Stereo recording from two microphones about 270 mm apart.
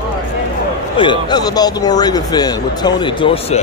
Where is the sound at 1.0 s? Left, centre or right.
Centre.